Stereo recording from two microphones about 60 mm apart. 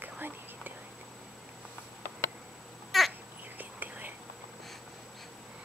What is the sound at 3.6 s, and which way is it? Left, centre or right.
Whispering, right.